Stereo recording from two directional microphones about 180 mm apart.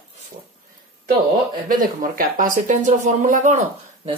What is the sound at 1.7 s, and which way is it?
Speech, 50° right (ahead or behind).